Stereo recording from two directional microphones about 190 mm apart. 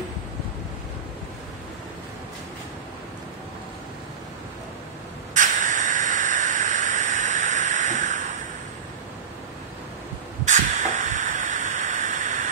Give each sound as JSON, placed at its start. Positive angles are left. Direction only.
{"t": 5.3, "sound": "hiss", "side_deg": -40}
{"t": 10.4, "sound": "vehicle", "side_deg": -40}